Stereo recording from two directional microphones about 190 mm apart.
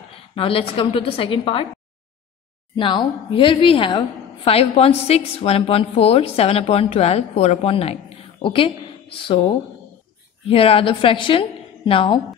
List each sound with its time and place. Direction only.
0.3 s a woman's voice: 30° left (ahead or behind)
2.8 s a woman's voice: 25° left (ahead or behind)
10.5 s a woman's voice: 30° left (ahead or behind)